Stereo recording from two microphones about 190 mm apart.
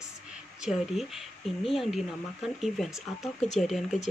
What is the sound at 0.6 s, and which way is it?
Speech, centre (ahead or behind).